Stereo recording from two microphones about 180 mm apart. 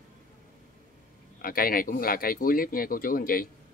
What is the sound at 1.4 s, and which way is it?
Speech, 55° left (ahead or behind).